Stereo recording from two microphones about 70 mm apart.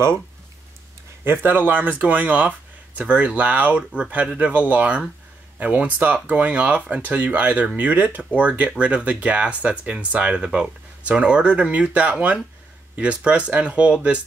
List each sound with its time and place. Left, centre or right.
1.2 s speech: right